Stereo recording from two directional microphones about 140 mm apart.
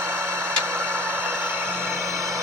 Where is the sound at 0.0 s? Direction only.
20° right (ahead or behind).